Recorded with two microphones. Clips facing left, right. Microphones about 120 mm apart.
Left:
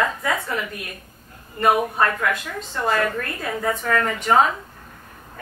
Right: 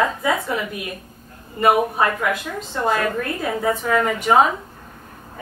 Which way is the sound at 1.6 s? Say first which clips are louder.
Right 2 dB; 10° right (ahead or behind).